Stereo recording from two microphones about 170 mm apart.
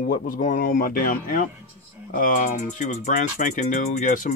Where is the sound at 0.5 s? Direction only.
60° left (ahead or behind).